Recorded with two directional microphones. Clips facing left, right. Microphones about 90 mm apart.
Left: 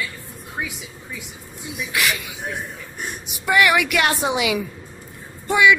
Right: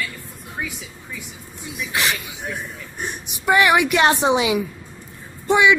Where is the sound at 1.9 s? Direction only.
25° right (ahead or behind).